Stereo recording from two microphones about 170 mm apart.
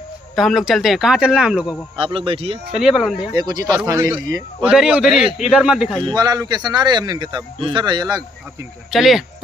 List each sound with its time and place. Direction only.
0.4 s a man's voice: centre (ahead or behind)
2.0 s a man's voice: 30° right (ahead or behind)
2.7 s a man's voice: centre (ahead or behind)
3.3 s a man's voice: 20° right (ahead or behind)
4.6 s a man's voice: 5° right (ahead or behind)
6.0 s a man's voice: 25° right (ahead or behind)
8.9 s a man's voice: centre (ahead or behind)